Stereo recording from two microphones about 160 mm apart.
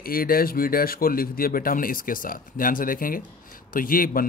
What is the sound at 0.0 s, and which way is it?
A man's voice, 65° left (ahead or behind).